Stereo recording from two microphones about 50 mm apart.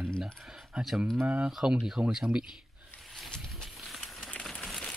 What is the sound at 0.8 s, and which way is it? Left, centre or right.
Speech, centre.